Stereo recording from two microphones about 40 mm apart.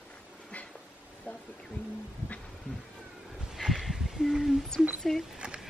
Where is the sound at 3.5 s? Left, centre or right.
Centre.